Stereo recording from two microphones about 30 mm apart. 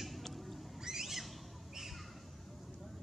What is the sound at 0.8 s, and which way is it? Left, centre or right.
Bird, centre.